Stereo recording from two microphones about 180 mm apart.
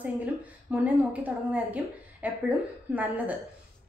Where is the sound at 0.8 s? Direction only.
10° right (ahead or behind).